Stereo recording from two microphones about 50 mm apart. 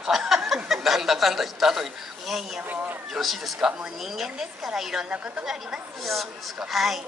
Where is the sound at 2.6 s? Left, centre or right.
Right.